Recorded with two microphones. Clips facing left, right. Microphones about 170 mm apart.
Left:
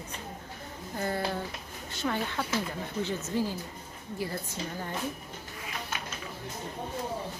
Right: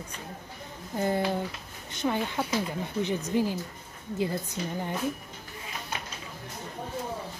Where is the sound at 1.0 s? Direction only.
20° right (ahead or behind).